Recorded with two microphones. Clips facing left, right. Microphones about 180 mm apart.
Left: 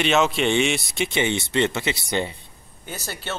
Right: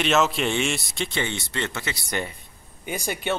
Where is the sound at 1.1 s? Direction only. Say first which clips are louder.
Left 8 dB; 20° left (ahead or behind).